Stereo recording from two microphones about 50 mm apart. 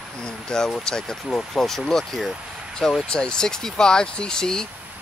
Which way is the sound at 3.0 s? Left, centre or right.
Centre.